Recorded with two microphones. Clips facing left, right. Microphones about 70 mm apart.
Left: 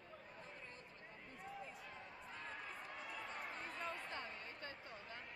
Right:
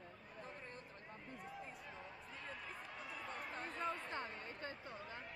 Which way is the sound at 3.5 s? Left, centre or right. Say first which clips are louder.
Right 2 dB; right.